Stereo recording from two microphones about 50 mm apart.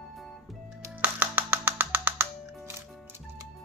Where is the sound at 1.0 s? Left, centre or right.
Right.